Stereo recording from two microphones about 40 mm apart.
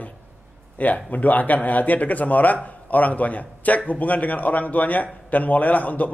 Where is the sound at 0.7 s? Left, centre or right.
Left.